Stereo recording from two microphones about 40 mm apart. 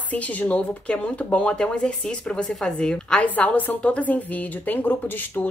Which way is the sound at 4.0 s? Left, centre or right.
Left.